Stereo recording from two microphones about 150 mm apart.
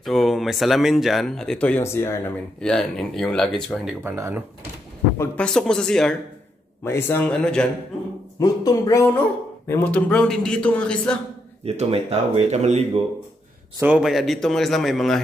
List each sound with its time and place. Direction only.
0.0 s speech: centre (ahead or behind); by 2.3 s 15° left (ahead or behind)
2.6 s speech: 5° left (ahead or behind)
4.0 s speech: 15° right (ahead or behind)
5.1 s a man's voice: 20° left (ahead or behind)
5.4 s speech: 5° left (ahead or behind)
6.8 s a man's voice: 15° left (ahead or behind)
8.4 s speech: 25° left (ahead or behind)
9.7 s a man's voice: 15° left (ahead or behind)
11.6 s speech: 45° right (ahead or behind)
13.7 s speech: 5° right (ahead or behind)